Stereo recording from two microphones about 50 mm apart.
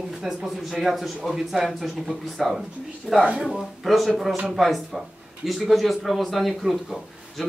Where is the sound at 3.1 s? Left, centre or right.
Centre.